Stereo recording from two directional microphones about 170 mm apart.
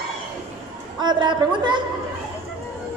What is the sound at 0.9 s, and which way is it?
Speech, 25° right (ahead or behind).